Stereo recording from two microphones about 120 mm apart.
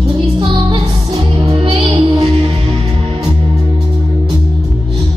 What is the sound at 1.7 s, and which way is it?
Music, 50° right (ahead or behind).